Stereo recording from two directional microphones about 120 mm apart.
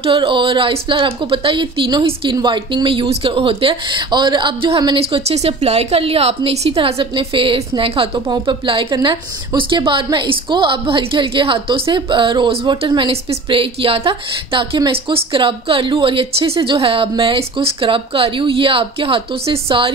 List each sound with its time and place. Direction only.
0.0 s a woman's voice: 45° right (ahead or behind)